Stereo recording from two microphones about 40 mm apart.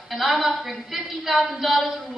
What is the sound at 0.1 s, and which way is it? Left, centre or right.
A woman's voice, centre.